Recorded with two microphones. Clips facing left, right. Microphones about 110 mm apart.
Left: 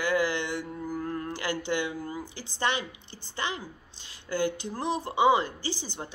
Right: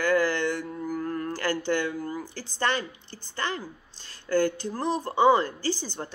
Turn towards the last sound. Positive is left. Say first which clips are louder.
# right 5 dB
turn(degrees=15)  # may be behind; listen again after turning